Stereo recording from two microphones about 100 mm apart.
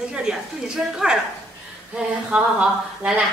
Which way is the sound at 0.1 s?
5° right (ahead or behind).